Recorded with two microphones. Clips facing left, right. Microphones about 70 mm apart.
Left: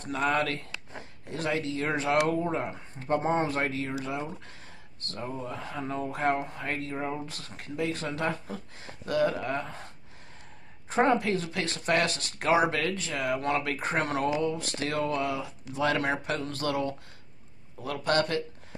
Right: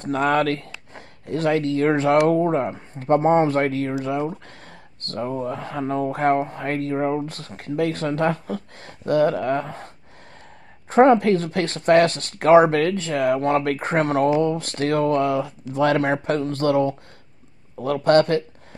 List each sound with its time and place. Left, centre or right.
0.0 s speech: right
10.9 s speech: right